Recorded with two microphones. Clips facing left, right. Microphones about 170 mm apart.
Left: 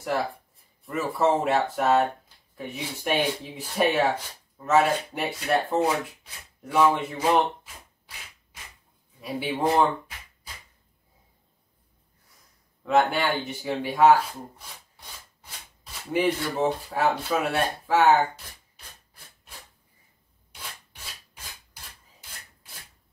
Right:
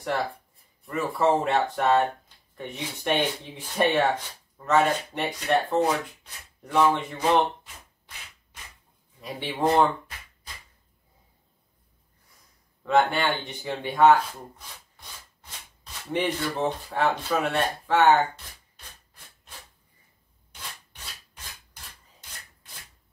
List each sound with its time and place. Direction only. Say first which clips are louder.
0.0 s speech: left 1 dB; centre (ahead or behind)
9.2 s speech: even; 5° left (ahead or behind)
12.8 s speech: even; 5° left (ahead or behind)
16.1 s speech: left 2 dB; 10° left (ahead or behind)